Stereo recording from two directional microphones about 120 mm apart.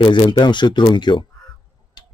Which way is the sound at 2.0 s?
35° left (ahead or behind).